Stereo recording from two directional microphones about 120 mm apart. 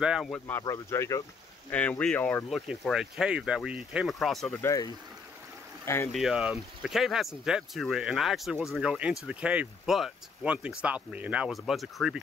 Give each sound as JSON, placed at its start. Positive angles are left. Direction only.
{"t": 0.0, "sound": "speech", "side_deg": -5}
{"t": 0.5, "sound": "speech", "side_deg": 25}
{"t": 1.7, "sound": "speech", "side_deg": 10}
{"t": 2.5, "sound": "speech", "side_deg": 0}
{"t": 4.5, "sound": "speech", "side_deg": 20}
{"t": 6.1, "sound": "speech", "side_deg": -5}